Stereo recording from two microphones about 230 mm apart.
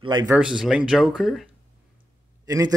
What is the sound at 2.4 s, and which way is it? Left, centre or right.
Speech, centre.